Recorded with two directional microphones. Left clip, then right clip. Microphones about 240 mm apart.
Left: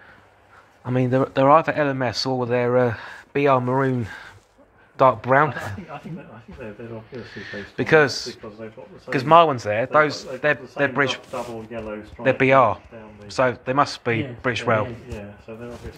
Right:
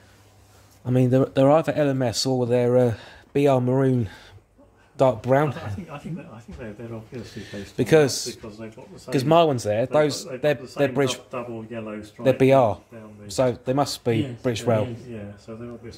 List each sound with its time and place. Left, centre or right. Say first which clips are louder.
0.8 s a man's voice: even; right
7.2 s a man's voice: left 5 dB; right
12.2 s a man's voice: left 1 dB; right